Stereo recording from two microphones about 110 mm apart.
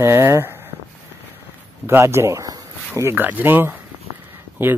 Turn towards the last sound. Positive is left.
turn(degrees=-20)  # may be behind; listen again after turning